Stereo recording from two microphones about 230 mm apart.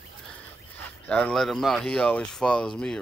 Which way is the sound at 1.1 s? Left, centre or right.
Centre.